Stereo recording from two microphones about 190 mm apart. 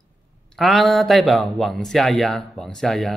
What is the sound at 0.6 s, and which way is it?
Speech, centre (ahead or behind).